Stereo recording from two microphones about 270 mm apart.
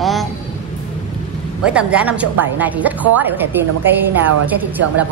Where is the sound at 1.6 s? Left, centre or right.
Centre.